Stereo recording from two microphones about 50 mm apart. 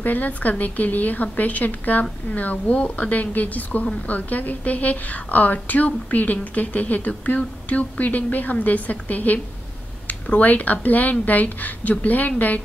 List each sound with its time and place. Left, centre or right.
0.0 s a woman's voice: left
10.4 s a woman's voice: left